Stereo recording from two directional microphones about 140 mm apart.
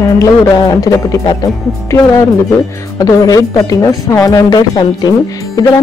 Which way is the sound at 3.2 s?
25° left (ahead or behind).